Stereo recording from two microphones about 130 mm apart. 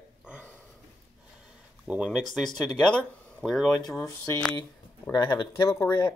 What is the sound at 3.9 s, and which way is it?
Speech, 25° left (ahead or behind).